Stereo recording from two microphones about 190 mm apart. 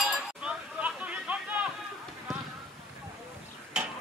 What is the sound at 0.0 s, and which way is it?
Chink, 5° right (ahead or behind).